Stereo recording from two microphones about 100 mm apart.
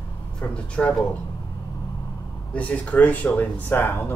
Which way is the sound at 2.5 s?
15° left (ahead or behind).